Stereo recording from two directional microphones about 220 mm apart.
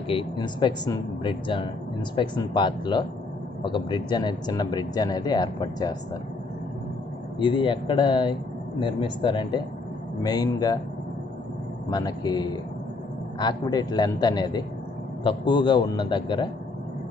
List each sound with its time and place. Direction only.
0.2 s speech: 20° left (ahead or behind)
7.3 s a man's voice: 20° left (ahead or behind)
11.9 s a man's voice: 20° left (ahead or behind)